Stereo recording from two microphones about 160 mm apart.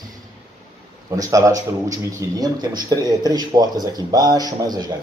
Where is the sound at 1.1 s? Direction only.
20° right (ahead or behind).